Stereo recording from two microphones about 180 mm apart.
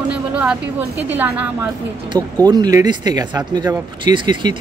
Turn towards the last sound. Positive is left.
turn(degrees=-25)  # may be behind; listen again after turning